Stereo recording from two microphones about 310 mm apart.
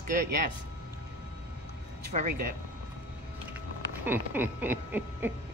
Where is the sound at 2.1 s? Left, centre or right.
Right.